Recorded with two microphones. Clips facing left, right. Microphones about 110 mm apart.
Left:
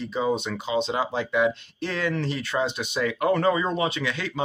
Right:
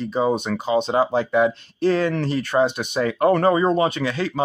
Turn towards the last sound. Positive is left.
turn(degrees=-35)  # may be behind; listen again after turning